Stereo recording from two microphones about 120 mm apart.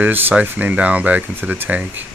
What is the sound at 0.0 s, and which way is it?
Speech, 15° right (ahead or behind).